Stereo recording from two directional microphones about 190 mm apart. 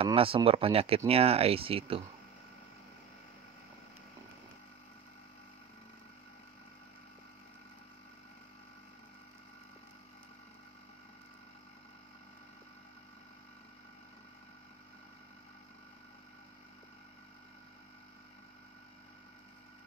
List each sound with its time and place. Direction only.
0.0 s speech: 30° right (ahead or behind)